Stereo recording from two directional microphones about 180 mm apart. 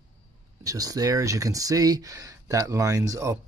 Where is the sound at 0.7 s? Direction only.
20° right (ahead or behind).